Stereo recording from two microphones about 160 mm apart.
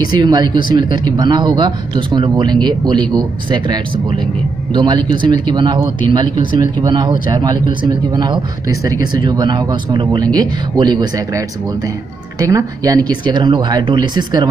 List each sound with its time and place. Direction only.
0.1 s speech: 25° right (ahead or behind)